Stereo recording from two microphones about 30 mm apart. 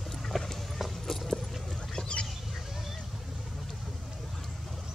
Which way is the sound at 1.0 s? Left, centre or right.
Centre.